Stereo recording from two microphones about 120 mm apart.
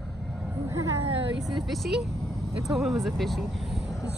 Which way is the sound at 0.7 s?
25° right (ahead or behind).